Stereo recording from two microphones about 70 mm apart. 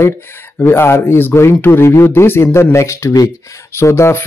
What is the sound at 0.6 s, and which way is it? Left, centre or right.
Speech, left.